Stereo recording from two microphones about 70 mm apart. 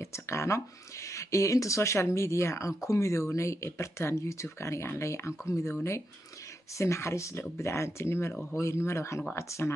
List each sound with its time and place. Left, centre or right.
0.0 s speech: left
6.8 s speech: left